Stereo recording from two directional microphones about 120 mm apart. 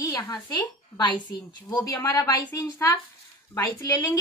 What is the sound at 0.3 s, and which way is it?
Speech, 35° left (ahead or behind).